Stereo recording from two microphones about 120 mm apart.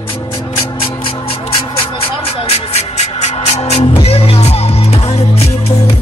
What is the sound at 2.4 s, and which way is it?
Music, 60° left (ahead or behind).